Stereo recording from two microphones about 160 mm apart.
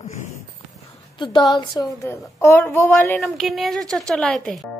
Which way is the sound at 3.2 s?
Centre (ahead or behind).